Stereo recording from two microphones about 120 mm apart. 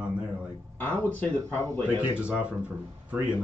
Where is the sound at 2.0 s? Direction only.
10° right (ahead or behind).